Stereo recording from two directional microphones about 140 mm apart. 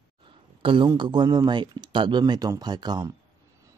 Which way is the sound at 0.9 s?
35° right (ahead or behind).